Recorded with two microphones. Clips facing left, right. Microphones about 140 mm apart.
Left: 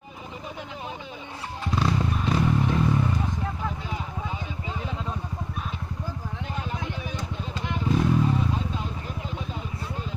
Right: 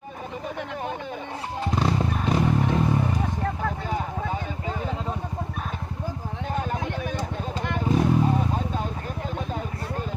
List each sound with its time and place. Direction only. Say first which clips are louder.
1.6 s motorcycle: right 1 dB; 40° right (ahead or behind)
2.7 s vehicle: right 1 dB; 40° right (ahead or behind)
3.4 s vehicle: right 4 dB; 60° right (ahead or behind)
6.5 s vehicle: right 6 dB; 45° right (ahead or behind)